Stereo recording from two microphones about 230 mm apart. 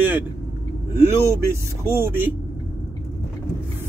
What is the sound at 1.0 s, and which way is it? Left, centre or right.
Speech, centre.